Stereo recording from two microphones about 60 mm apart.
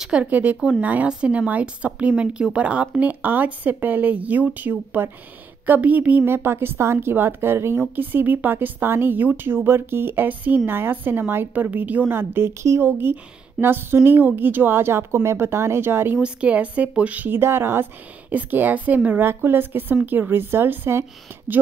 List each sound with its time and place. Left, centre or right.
0.0 s speech: centre
6.2 s speech: right
12.1 s speech: right
16.2 s speech: right
17.3 s speech: right
18.3 s speech: right